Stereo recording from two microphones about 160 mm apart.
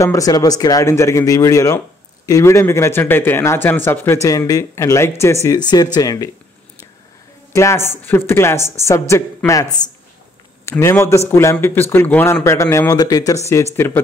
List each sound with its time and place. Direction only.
0.0 s speech: 20° left (ahead or behind)
7.5 s speech: 15° left (ahead or behind)
10.7 s speech: 15° left (ahead or behind)